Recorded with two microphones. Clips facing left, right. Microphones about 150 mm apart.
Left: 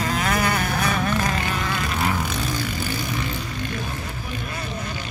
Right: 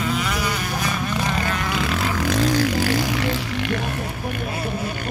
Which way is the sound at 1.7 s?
90° right.